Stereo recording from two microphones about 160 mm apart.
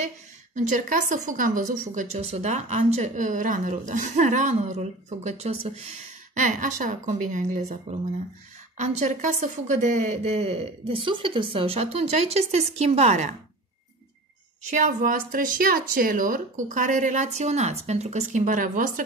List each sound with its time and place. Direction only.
0.6 s a woman's voice: 50° right (ahead or behind)
14.7 s a woman's voice: 50° right (ahead or behind)